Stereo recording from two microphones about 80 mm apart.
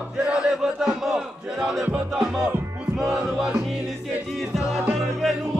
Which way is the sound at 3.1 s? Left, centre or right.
Centre.